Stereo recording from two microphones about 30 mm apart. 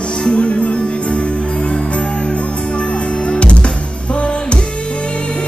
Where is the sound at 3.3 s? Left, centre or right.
Left.